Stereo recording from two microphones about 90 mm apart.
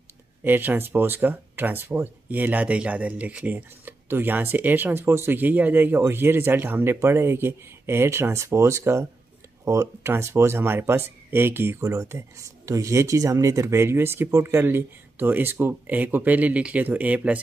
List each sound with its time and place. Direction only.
0.4 s speech: 20° right (ahead or behind)
11.8 s speech: 35° right (ahead or behind); by 17.4 s 15° right (ahead or behind)